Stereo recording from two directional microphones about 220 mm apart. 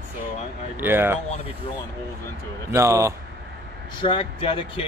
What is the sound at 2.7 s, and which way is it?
Speech, 15° right (ahead or behind).